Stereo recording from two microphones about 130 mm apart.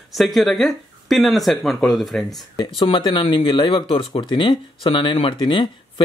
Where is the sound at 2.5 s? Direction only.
40° left (ahead or behind).